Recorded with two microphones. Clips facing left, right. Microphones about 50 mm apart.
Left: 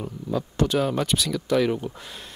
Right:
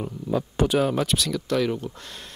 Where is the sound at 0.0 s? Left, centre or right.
Centre.